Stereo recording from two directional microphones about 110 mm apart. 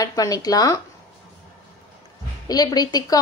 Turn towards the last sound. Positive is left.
turn(degrees=35)  # may be behind; listen again after turning